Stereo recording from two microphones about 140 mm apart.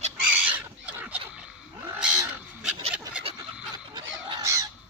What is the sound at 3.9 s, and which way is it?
Bird, 30° right (ahead or behind).